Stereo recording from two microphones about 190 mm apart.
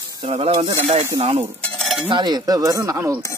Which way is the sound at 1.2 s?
35° right (ahead or behind).